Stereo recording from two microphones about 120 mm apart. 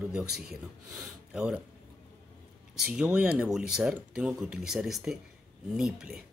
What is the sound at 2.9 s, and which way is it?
Speech, 10° right (ahead or behind).